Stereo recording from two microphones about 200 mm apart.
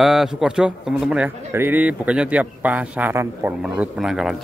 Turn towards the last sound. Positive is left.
turn(degrees=0)  # may be behind; listen again after turning